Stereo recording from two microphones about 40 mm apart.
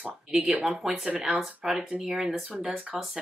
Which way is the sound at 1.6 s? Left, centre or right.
Centre.